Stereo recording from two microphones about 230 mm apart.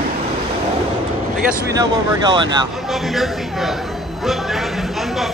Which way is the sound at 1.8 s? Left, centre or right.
Centre.